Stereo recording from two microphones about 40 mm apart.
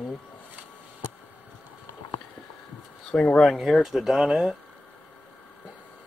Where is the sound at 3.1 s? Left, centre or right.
Centre.